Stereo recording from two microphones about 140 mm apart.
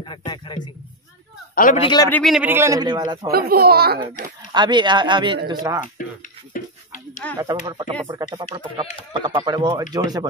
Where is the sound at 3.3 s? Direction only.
90° right.